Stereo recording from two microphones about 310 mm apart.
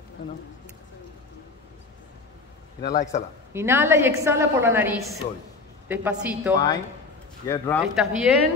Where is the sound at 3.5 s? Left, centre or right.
Centre.